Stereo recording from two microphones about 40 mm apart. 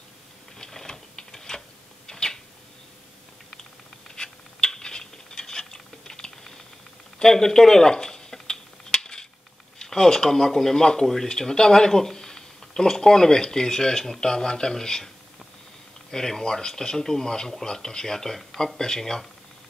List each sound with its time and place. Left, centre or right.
0.6 s sewing machine: centre
2.0 s a sound: centre
4.1 s a sound: centre
7.2 s dishes: centre
9.8 s speech: centre
16.1 s speech: centre
18.8 s speech: centre